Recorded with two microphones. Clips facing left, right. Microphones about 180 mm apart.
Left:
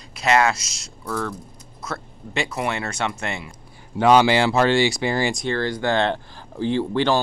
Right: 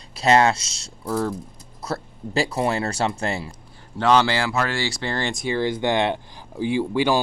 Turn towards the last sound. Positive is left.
turn(degrees=-10)  # may be behind; listen again after turning